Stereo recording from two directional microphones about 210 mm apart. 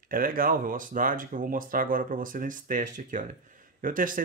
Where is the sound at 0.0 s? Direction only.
40° right (ahead or behind).